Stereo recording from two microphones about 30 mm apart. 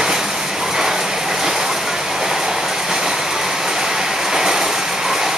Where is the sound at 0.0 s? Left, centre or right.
Centre.